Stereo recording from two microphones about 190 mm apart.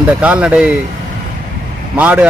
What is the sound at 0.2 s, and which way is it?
Speech, 5° right (ahead or behind).